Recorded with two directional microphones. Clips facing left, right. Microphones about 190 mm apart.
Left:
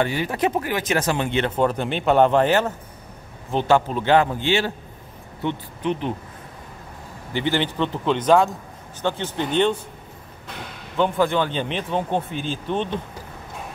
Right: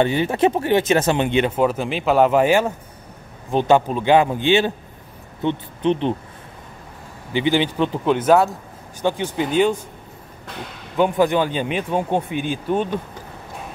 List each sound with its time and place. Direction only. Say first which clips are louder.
0.0 s speech: right 5 dB; 25° right (ahead or behind)
7.3 s speech: right 4 dB; 15° right (ahead or behind)
11.0 s speech: right 3 dB; 15° right (ahead or behind)